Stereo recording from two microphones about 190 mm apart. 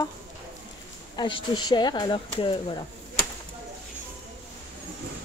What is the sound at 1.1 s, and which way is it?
Speech, 25° left (ahead or behind).